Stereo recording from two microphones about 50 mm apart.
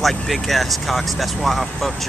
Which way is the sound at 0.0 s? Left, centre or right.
Centre.